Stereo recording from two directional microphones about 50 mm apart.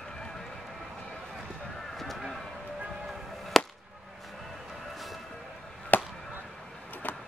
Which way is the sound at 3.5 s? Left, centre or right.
Centre.